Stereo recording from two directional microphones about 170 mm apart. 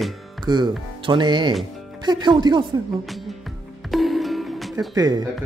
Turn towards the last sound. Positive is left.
turn(degrees=-20)  # may be behind; listen again after turning